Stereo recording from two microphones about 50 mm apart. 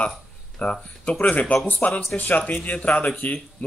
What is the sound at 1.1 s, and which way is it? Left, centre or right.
Speech, left.